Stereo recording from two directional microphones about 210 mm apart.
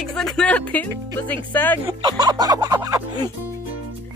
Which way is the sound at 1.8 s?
20° right (ahead or behind).